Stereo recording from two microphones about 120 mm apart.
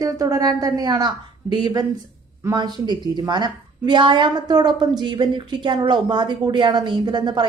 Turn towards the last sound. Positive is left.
turn(degrees=-40)  # may be behind; listen again after turning